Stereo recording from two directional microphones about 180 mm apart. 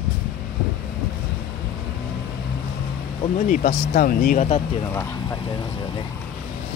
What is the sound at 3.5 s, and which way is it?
Speech, 55° left (ahead or behind).